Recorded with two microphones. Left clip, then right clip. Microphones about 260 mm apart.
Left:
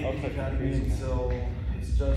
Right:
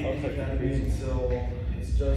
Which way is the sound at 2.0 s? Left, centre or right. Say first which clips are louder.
Right 1 dB; centre.